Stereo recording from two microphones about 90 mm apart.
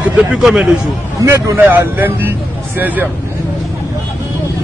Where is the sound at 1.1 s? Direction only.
35° right (ahead or behind).